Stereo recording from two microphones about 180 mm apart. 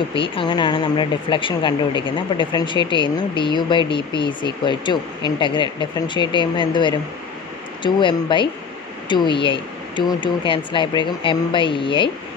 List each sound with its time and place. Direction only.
0.1 s speech: 30° left (ahead or behind)